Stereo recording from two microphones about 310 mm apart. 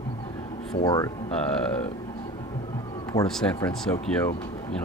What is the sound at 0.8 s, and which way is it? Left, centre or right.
Speech, centre.